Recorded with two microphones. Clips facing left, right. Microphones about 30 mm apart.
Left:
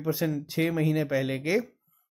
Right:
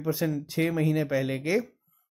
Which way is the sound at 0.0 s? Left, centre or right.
Centre.